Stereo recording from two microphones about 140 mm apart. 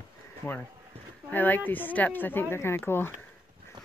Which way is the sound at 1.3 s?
15° left (ahead or behind).